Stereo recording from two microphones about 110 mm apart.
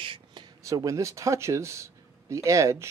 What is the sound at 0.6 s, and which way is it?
Speech, 30° right (ahead or behind).